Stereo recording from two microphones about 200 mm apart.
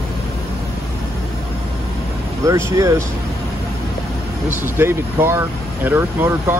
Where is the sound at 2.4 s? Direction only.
15° right (ahead or behind).